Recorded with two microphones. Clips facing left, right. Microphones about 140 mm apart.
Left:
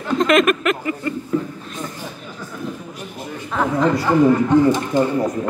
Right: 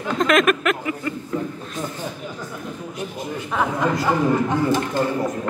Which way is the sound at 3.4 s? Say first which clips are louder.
Left 4 dB; 5° right (ahead or behind).